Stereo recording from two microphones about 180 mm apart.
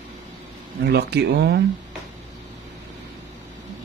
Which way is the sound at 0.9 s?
65° right (ahead or behind).